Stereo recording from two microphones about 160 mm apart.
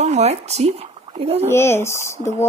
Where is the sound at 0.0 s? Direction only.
45° right (ahead or behind).